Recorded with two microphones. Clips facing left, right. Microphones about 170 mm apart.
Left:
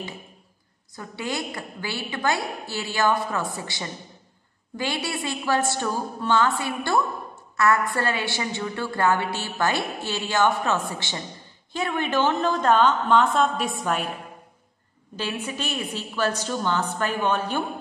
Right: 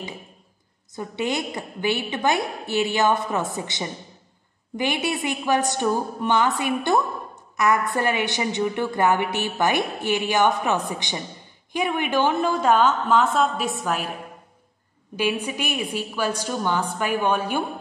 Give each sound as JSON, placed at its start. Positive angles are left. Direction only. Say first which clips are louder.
{"t": 0.9, "sound": "a woman's voice", "louder": "right 4 dB", "side_deg": -20}
{"t": 15.1, "sound": "a woman's voice", "louder": "right 5 dB", "side_deg": -15}